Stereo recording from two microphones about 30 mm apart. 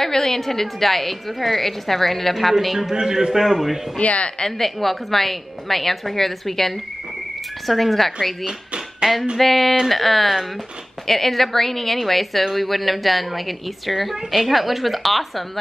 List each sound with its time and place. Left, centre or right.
0.0 s a woman's voice: centre
2.6 s a woman's voice: centre
2.9 s a man's voice: right
4.0 s a woman's voice: left
4.5 s a woman's voice: centre
8.5 s a sound: right
9.4 s a woman's voice: centre